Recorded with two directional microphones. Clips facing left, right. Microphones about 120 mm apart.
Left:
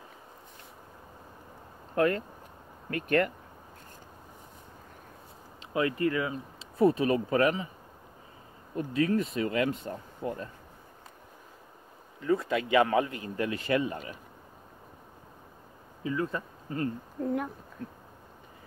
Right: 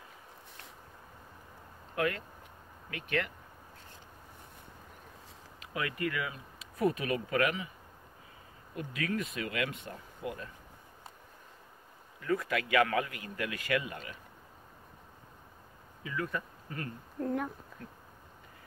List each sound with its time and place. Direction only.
2.0 s speech: 40° left (ahead or behind)
5.7 s speech: 30° left (ahead or behind)
8.7 s speech: 30° left (ahead or behind)
12.2 s speech: 25° left (ahead or behind)
16.0 s speech: 30° left (ahead or behind)
17.2 s speech: 5° left (ahead or behind)